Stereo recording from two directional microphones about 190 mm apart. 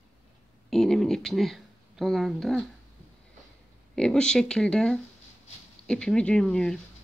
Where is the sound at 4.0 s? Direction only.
5° left (ahead or behind).